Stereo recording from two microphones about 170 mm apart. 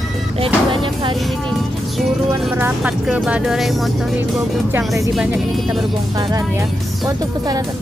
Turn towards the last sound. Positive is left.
turn(degrees=-20)  # may be behind; listen again after turning